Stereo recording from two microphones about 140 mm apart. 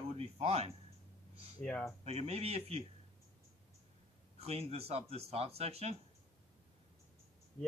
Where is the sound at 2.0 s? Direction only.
45° right (ahead or behind).